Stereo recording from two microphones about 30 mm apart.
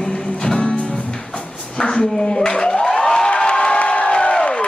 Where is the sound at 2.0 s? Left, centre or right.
Left.